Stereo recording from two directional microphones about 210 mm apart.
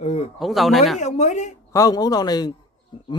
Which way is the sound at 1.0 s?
35° left (ahead or behind).